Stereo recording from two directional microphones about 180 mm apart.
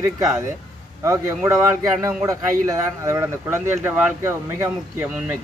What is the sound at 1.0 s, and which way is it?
Speech, 15° right (ahead or behind).